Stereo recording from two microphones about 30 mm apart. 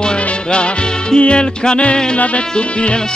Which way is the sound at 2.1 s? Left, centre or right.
Left.